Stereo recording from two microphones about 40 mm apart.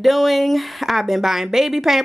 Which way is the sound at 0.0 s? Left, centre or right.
Centre.